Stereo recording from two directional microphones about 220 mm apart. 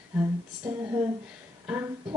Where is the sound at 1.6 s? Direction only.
10° right (ahead or behind).